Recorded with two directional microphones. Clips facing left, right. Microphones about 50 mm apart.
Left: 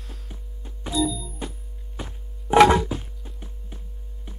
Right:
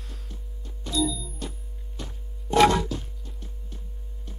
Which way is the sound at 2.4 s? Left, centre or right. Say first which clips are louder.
Left 4 dB; left.